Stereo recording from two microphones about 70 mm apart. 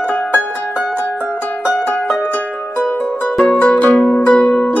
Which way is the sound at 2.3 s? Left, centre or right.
Left.